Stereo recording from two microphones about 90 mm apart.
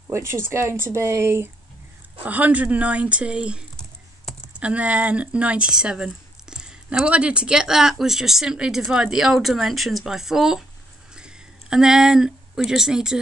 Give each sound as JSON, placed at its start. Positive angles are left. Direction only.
{"t": 0.1, "sound": "speech", "side_deg": -30}
{"t": 2.2, "sound": "speech", "side_deg": -15}